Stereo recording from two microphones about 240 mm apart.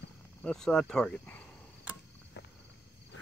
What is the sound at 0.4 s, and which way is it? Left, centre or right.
Speech, centre.